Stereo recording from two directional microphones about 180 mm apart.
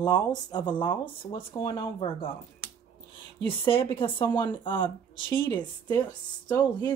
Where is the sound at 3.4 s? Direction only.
30° left (ahead or behind).